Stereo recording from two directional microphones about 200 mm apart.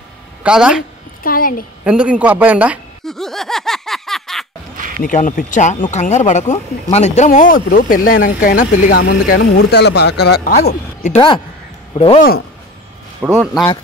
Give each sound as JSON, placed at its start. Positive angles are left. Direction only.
{"t": 0.4, "sound": "speech", "side_deg": -5}
{"t": 1.2, "sound": "speech", "side_deg": 45}
{"t": 1.9, "sound": "a sound", "side_deg": -5}
{"t": 4.7, "sound": "a sound", "side_deg": -40}
{"t": 5.0, "sound": "speech", "side_deg": 40}
{"t": 11.1, "sound": "speech", "side_deg": 25}
{"t": 13.2, "sound": "speech", "side_deg": -5}